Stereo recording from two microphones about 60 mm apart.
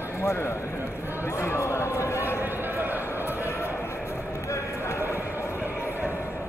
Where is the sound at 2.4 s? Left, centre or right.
Right.